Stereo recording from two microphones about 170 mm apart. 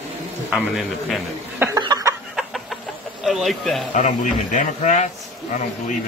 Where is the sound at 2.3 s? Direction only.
Centre (ahead or behind).